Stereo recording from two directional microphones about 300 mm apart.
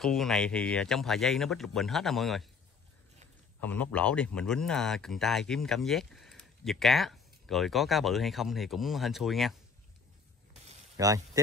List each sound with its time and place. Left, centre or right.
0.0 s speech: centre
3.6 s speech: centre
10.6 s a sound: centre